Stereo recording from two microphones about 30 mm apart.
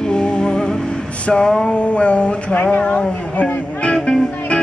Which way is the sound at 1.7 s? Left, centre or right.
Left.